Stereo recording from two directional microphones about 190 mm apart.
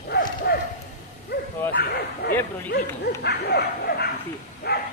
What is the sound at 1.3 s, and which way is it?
Bow-wow, 55° left (ahead or behind).